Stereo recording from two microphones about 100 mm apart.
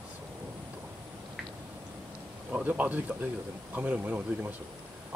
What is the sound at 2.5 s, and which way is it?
Speech, 15° right (ahead or behind).